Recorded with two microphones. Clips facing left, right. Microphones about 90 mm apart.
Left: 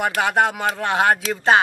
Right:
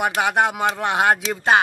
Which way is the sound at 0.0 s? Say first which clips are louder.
Even; 20° right (ahead or behind).